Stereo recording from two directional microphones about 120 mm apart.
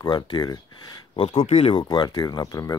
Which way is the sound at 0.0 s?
35° left (ahead or behind).